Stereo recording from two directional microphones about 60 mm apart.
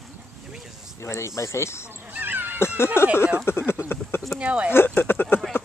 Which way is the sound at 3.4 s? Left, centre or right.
Left.